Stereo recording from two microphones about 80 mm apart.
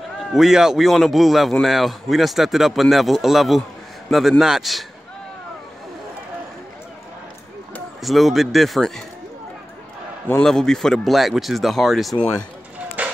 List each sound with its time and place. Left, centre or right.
0.3 s speech: centre
8.0 s speech: centre
10.3 s speech: centre
13.0 s music: centre